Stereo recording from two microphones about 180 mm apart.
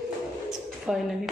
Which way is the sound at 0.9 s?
Centre (ahead or behind).